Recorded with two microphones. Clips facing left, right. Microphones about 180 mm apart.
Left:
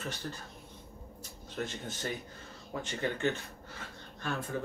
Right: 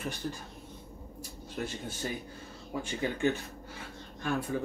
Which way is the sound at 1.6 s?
10° right (ahead or behind).